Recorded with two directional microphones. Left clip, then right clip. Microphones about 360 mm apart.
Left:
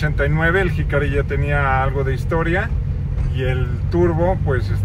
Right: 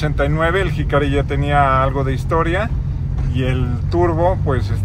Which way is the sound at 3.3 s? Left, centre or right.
Right.